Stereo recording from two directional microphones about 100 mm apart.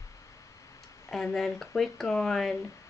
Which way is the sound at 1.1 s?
5° left (ahead or behind).